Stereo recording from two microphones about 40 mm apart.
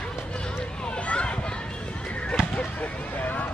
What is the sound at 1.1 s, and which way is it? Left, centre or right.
Children playing, left.